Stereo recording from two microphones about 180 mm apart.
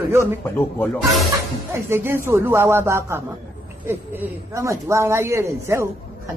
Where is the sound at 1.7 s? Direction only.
15° right (ahead or behind).